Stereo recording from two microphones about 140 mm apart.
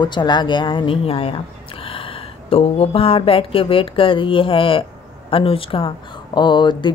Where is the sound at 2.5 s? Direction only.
45° left (ahead or behind).